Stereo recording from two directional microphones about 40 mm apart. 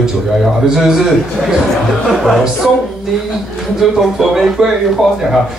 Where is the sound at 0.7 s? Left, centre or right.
Centre.